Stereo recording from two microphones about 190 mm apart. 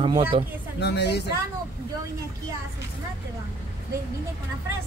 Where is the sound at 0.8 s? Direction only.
60° left (ahead or behind).